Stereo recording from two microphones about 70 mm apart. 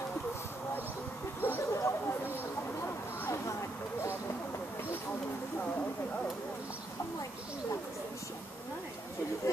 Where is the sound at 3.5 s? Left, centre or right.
Left.